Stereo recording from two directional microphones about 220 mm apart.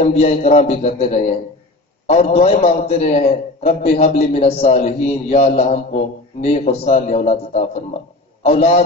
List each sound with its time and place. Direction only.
0.0 s a man's voice: 30° left (ahead or behind)